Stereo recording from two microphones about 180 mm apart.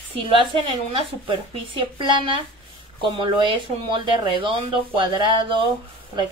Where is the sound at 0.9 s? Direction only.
30° right (ahead or behind).